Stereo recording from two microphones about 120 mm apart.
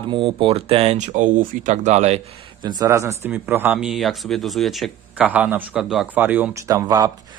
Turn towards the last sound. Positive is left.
turn(degrees=-30)  # may be behind; listen again after turning